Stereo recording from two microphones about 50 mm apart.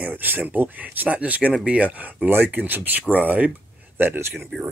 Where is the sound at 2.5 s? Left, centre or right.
Right.